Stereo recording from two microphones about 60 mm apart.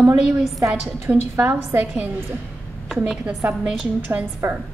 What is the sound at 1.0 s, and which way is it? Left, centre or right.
Speech, right.